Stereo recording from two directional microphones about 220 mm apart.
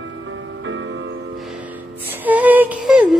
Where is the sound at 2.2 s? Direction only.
10° right (ahead or behind).